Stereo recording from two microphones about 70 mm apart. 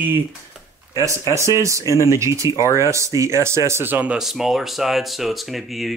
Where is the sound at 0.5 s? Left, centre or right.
Centre.